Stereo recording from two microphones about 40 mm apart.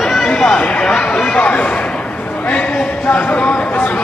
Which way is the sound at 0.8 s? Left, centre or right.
Left.